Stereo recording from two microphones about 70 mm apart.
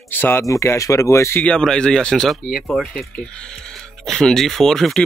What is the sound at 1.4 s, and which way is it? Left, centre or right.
A man's voice, centre.